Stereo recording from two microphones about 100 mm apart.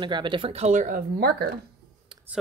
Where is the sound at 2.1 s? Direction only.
50° right (ahead or behind).